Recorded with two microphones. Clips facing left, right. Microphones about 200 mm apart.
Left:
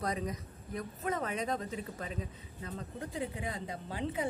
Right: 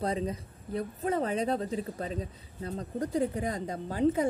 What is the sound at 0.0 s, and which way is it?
A woman's voice, 30° right (ahead or behind).